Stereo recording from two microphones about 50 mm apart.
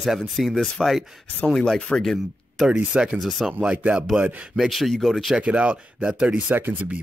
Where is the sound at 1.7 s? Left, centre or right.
Centre.